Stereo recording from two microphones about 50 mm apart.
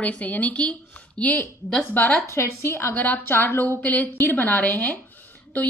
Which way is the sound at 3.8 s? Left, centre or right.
Left.